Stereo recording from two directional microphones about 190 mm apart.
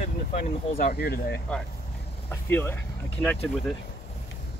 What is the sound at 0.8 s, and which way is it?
Speech, 55° left (ahead or behind).